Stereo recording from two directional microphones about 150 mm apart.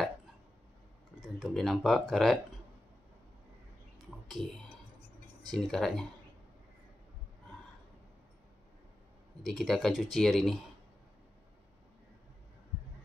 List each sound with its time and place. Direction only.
1.2 s speech: centre (ahead or behind)
5.5 s speech: centre (ahead or behind)
9.5 s speech: centre (ahead or behind)